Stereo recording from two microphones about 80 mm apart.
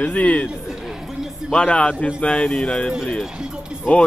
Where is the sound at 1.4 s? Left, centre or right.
Centre.